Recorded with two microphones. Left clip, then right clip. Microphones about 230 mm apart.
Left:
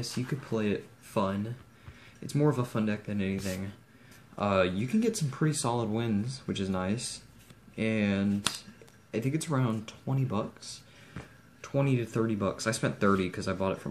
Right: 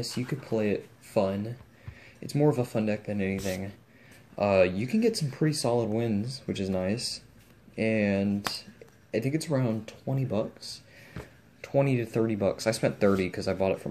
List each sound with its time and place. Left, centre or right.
0.0 s speech: centre
4.4 s speech: left
5.0 s speech: centre
11.8 s speech: centre